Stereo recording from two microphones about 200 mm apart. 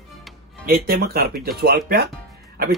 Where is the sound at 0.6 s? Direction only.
45° right (ahead or behind).